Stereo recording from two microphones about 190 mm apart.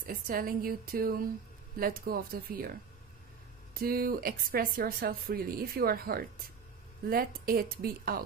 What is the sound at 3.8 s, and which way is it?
A woman's voice, 50° right (ahead or behind).